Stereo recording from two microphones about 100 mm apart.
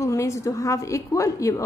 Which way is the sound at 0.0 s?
30° left (ahead or behind).